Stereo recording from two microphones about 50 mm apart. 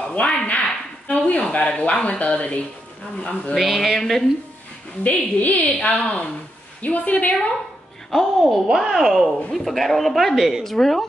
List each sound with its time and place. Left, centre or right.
0.1 s speech: left
3.5 s speech: centre
5.0 s a woman's voice: left
8.1 s speech: centre
10.6 s speech: centre